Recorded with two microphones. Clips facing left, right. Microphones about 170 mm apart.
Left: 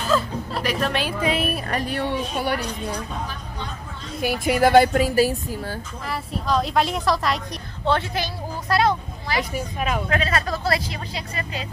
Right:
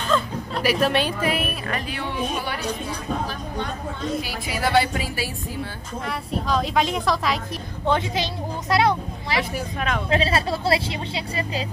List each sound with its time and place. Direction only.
0.0 s music: 5° left (ahead or behind)
0.7 s a woman's voice: 5° right (ahead or behind)
1.2 s speech: 25° left (ahead or behind)
1.5 s a woman's voice: 45° left (ahead or behind)
4.2 s a woman's voice: 50° left (ahead or behind)
6.0 s speech: centre (ahead or behind)
7.8 s a woman's voice: 20° right (ahead or behind)
9.4 s speech: centre (ahead or behind)
10.0 s speech: 30° right (ahead or behind)